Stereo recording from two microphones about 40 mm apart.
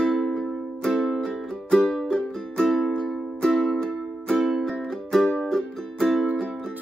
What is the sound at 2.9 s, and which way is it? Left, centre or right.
Music, centre.